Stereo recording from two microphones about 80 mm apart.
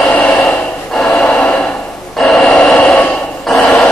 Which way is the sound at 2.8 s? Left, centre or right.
Centre.